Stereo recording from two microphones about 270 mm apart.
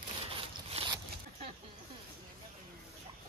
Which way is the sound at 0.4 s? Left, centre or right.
Centre.